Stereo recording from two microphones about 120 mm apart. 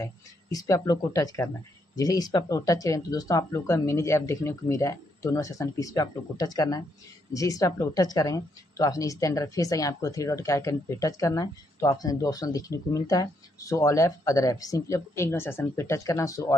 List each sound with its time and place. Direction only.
0.0 s speech: 30° left (ahead or behind)